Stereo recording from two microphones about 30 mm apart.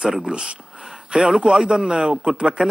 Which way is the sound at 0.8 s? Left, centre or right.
Right.